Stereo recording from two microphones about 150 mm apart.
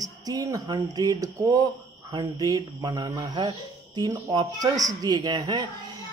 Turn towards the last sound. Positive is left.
turn(degrees=-30)  # may be behind; listen again after turning